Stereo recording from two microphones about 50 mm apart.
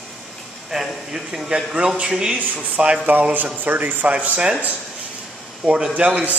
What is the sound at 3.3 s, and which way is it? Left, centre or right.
A man's voice, right.